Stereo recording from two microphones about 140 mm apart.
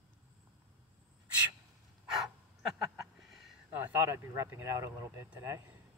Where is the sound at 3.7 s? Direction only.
15° right (ahead or behind).